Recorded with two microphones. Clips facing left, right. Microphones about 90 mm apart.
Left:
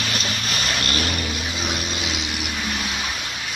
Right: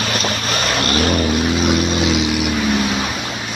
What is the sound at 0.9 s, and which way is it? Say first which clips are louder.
Vehicle: right 10 dB; 50° right (ahead or behind).